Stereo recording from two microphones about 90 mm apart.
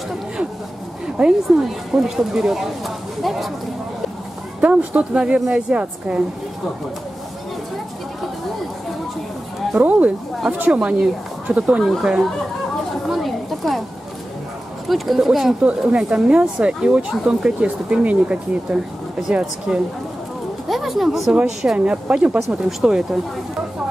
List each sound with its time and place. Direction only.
1.1 s speech: 10° right (ahead or behind)
4.6 s speech: 15° right (ahead or behind)
9.8 s speech: 15° right (ahead or behind)
13.1 s a sound: centre (ahead or behind)
14.9 s speech: centre (ahead or behind)
20.6 s a sound: centre (ahead or behind)
21.5 s speech: 10° right (ahead or behind)